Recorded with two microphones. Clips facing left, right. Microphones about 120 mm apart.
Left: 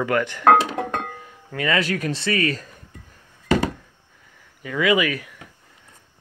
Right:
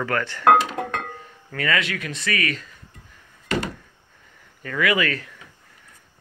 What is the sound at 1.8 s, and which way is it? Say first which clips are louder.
Speech: left 5 dB; 40° left (ahead or behind).